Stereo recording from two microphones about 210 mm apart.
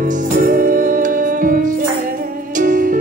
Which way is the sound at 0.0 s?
40° right (ahead or behind).